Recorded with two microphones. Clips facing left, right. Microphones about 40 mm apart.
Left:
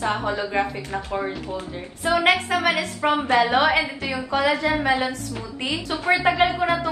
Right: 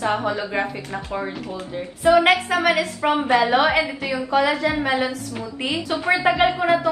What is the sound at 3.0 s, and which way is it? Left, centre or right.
Speech, right.